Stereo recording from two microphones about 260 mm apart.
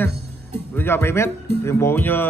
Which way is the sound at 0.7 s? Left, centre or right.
Centre.